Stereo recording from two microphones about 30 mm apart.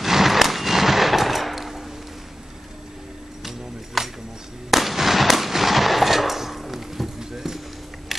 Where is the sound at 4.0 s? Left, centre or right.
Centre.